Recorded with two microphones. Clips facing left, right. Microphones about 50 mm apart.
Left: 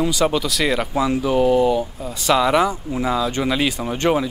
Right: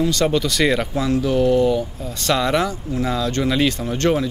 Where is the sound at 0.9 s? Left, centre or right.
Centre.